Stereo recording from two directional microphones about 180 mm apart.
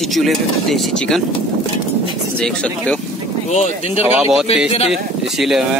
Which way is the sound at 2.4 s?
5° left (ahead or behind).